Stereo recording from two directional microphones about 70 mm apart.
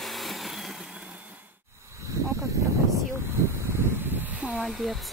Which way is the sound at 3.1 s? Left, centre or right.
Right.